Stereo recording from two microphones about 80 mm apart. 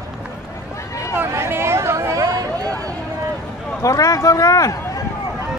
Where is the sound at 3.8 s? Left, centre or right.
Left.